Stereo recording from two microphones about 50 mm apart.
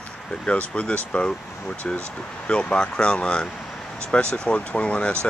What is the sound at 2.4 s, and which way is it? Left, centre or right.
Speech, left.